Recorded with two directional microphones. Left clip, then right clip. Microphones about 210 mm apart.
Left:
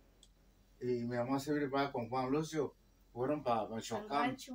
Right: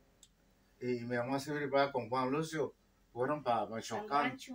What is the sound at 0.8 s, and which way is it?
Speech, 15° left (ahead or behind).